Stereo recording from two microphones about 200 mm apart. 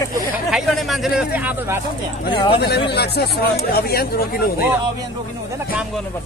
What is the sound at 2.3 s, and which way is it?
Speech, 25° left (ahead or behind).